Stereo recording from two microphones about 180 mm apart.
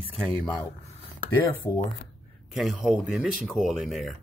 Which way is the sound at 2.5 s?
Centre (ahead or behind).